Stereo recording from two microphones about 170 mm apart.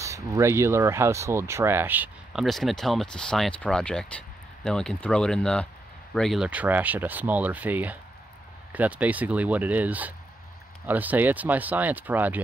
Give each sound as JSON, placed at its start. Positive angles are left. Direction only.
{"t": 0.0, "sound": "speech", "side_deg": -15}
{"t": 2.4, "sound": "speech", "side_deg": 0}